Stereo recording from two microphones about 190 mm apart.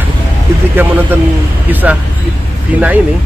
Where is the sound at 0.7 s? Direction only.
10° right (ahead or behind).